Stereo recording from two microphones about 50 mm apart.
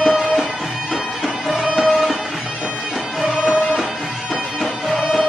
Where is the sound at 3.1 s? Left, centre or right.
Centre.